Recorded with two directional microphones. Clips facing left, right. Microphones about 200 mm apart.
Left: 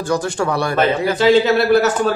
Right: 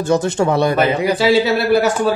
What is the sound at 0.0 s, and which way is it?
Speech, 25° right (ahead or behind).